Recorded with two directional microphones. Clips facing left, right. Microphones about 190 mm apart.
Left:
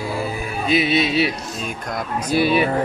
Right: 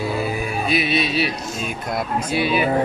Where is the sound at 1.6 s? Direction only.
10° right (ahead or behind).